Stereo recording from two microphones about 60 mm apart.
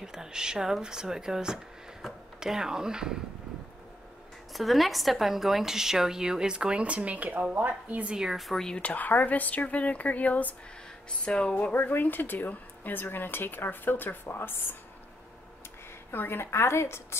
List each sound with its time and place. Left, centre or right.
0.0 s a woman's voice: centre
4.6 s a woman's voice: centre; by 8.0 s right
8.0 s a woman's voice: centre
8.3 s speech: centre
8.6 s speech: left
11.1 s speech: centre
11.7 s speech: left
16.1 s a woman's voice: left